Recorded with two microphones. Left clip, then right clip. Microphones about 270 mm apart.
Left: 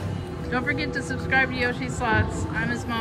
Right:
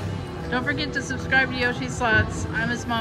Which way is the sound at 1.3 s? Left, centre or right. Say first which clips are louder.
Right 1 dB; centre.